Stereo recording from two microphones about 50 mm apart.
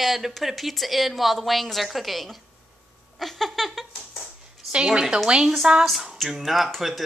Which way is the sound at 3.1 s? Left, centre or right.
Centre.